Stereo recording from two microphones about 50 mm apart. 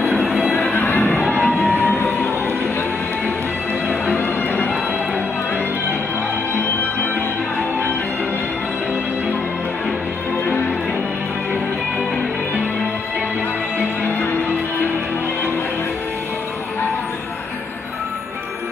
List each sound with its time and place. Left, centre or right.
0.2 s music: centre
0.7 s music: left
4.0 s music: left